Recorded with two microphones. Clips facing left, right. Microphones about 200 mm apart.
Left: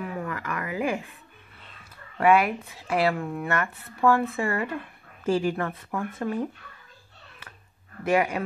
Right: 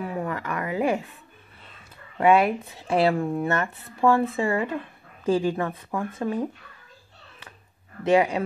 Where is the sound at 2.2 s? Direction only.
25° right (ahead or behind).